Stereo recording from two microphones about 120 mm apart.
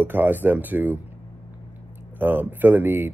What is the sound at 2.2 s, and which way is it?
Speech, 15° right (ahead or behind).